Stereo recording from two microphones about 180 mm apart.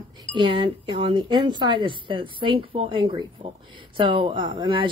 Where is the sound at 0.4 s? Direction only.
30° right (ahead or behind).